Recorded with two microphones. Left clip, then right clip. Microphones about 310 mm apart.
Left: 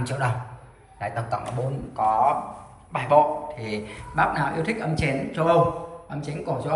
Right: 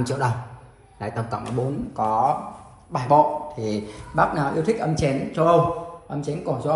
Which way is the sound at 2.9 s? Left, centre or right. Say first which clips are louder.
Right 1 dB; centre.